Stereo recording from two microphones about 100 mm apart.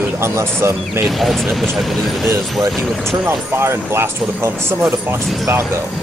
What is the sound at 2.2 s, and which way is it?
Speech, 30° right (ahead or behind).